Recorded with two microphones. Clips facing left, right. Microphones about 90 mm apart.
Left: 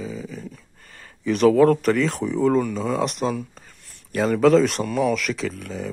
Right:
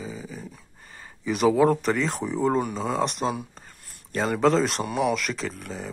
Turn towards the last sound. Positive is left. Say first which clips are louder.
# left 4 dB
turn(degrees=0)  # may be behind; listen again after turning